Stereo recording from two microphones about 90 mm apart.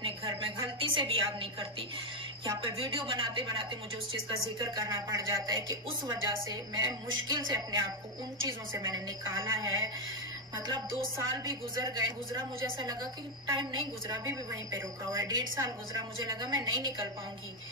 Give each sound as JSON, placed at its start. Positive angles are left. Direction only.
{"t": 0.0, "sound": "a sound", "side_deg": -65}
{"t": 0.7, "sound": "a woman's voice", "side_deg": -75}
{"t": 2.4, "sound": "speech", "side_deg": -60}
{"t": 4.6, "sound": "a woman's voice", "side_deg": -50}
{"t": 4.9, "sound": "a woman's voice", "side_deg": -40}
{"t": 11.4, "sound": "a woman's voice", "side_deg": -50}